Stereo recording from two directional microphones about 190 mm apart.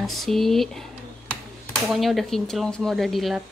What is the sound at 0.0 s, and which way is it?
Speech, centre (ahead or behind).